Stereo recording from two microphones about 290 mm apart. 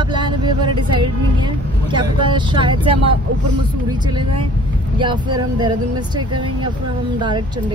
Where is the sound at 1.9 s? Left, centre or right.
Centre.